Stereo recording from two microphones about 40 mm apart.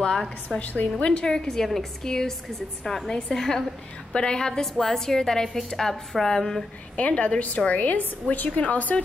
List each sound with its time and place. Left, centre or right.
0.5 s a woman's voice: centre
0.9 s a woman's voice: left
1.2 s a woman's voice: centre
4.1 s a woman's voice: left
7.0 s a woman's voice: left